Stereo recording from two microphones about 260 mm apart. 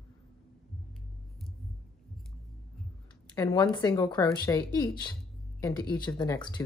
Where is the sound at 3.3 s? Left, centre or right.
Centre.